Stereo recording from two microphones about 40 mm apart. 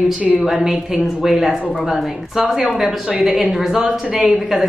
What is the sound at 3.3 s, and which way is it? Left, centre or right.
Speech, centre.